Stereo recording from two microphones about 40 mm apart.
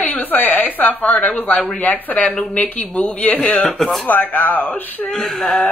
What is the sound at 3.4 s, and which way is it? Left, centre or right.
Speech, left.